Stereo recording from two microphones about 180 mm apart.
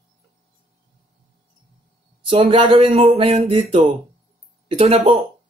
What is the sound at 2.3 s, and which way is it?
Music, 35° right (ahead or behind).